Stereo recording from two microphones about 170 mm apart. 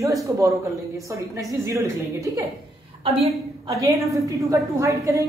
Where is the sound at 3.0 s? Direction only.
35° right (ahead or behind).